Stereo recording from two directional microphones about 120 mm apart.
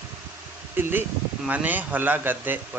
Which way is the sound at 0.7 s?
15° right (ahead or behind).